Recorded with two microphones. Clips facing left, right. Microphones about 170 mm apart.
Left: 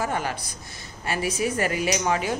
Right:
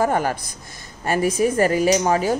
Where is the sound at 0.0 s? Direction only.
45° right (ahead or behind).